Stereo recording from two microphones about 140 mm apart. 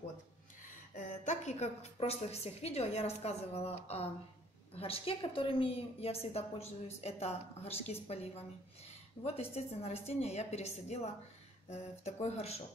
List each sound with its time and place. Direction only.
0.9 s a woman's voice: 60° left (ahead or behind)